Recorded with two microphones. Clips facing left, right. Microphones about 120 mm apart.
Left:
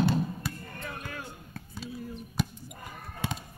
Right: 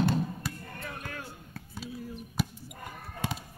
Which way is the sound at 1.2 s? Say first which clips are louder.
Left 1 dB; 5° right (ahead or behind).